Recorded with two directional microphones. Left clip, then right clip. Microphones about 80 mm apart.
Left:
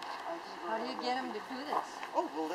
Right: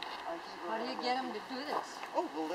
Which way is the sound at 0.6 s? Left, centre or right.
Centre.